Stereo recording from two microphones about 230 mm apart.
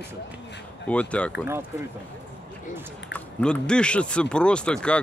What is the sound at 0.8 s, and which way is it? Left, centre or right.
Speech, centre.